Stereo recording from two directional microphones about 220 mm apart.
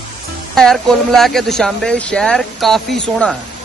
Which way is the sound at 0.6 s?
Centre (ahead or behind).